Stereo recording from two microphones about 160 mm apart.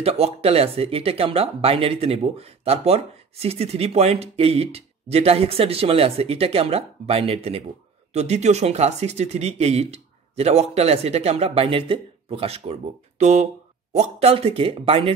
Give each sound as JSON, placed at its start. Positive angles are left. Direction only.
{"t": 0.0, "sound": "speech", "side_deg": -40}